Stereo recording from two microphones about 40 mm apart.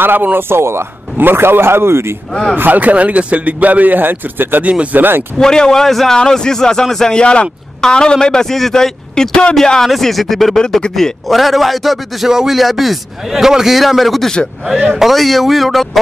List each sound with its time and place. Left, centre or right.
0.0 s speech: right
0.5 s speech: right
2.5 s speech: right
5.4 s speech: centre
7.2 s speech: left
9.8 s a man's voice: centre
12.3 s speech: centre
12.5 s a man's voice: centre